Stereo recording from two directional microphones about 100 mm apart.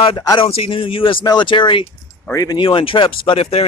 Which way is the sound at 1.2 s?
50° left (ahead or behind).